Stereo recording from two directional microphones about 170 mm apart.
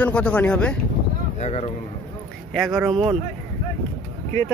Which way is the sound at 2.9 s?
30° right (ahead or behind).